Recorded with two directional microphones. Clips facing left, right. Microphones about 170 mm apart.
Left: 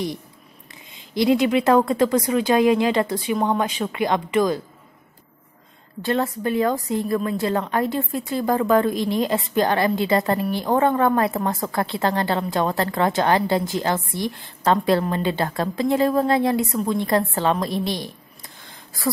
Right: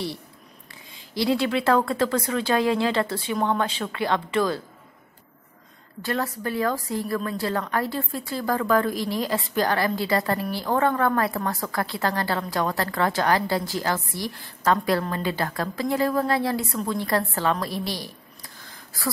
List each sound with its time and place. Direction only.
0.9 s speech: 20° left (ahead or behind)
6.0 s a woman's voice: 25° left (ahead or behind)